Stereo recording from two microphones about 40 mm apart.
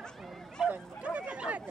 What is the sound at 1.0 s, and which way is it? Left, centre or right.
Chatter, right.